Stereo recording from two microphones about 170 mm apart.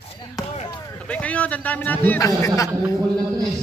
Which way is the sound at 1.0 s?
10° left (ahead or behind).